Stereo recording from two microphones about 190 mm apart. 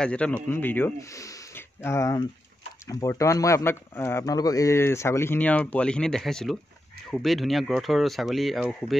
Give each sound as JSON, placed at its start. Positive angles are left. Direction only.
{"t": 0.0, "sound": "speech", "side_deg": 5}